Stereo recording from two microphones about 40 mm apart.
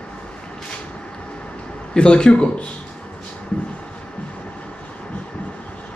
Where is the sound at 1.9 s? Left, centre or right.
Left.